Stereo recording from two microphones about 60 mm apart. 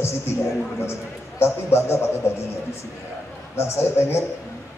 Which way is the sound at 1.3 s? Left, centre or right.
Left.